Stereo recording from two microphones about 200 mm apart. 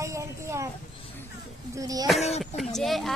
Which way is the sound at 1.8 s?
20° right (ahead or behind).